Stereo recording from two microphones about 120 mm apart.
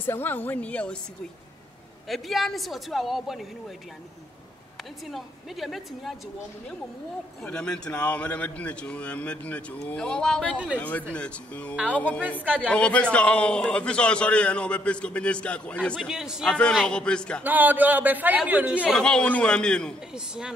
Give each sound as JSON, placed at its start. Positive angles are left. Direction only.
{"t": 0.0, "sound": "a man's voice", "side_deg": 15}
{"t": 2.0, "sound": "a woman's voice", "side_deg": 0}
{"t": 5.0, "sound": "a woman's voice", "side_deg": 0}
{"t": 7.4, "sound": "a man's voice", "side_deg": 10}
{"t": 16.1, "sound": "a woman's voice", "side_deg": -5}
{"t": 16.4, "sound": "a man's voice", "side_deg": 10}
{"t": 17.4, "sound": "a man's voice", "side_deg": -15}
{"t": 18.9, "sound": "a man's voice", "side_deg": 5}